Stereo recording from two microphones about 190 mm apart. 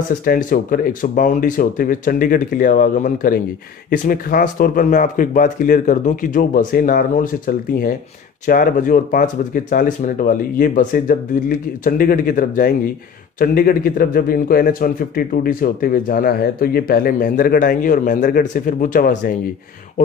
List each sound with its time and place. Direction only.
0.2 s speech: 50° left (ahead or behind)